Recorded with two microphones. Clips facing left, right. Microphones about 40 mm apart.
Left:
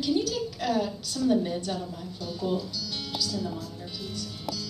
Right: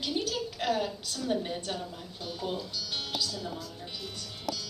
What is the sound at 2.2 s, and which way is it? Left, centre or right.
Speech, right.